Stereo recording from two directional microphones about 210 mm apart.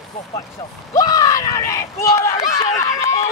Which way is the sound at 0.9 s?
15° left (ahead or behind).